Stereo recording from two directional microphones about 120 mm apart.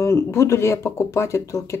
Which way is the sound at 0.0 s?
25° left (ahead or behind).